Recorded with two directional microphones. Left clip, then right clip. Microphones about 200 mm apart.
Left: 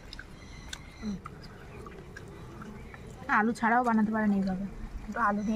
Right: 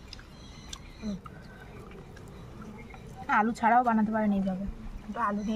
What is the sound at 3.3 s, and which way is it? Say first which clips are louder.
A woman's voice: right 2 dB; 10° right (ahead or behind).